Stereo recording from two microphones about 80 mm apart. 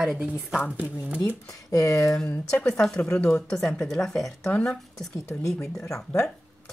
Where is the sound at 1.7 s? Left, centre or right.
Left.